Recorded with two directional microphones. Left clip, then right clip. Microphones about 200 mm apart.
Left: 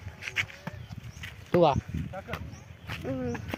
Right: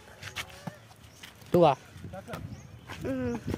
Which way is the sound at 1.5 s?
15° right (ahead or behind).